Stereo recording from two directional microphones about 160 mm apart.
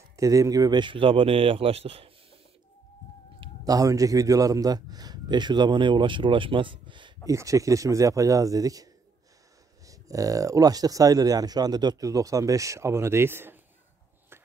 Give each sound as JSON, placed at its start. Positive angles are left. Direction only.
{"t": 0.1, "sound": "speech", "side_deg": -20}
{"t": 3.6, "sound": "speech", "side_deg": -20}
{"t": 7.2, "sound": "speech", "side_deg": -20}
{"t": 9.8, "sound": "speech", "side_deg": -20}